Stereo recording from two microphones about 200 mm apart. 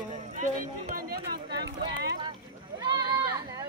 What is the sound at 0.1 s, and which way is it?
Run, 40° right (ahead or behind).